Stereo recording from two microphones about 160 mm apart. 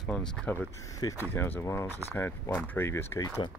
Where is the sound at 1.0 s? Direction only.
25° left (ahead or behind).